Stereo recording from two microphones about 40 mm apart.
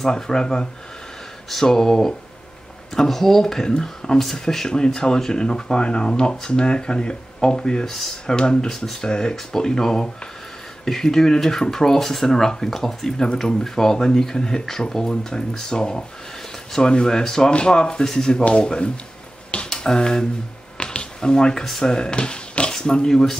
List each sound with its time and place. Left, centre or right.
0.0 s speech: centre
20.7 s a sound: left
21.6 s speech: centre
21.9 s speech: left